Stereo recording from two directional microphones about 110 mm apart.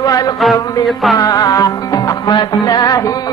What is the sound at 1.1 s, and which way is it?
Mantra, 35° left (ahead or behind).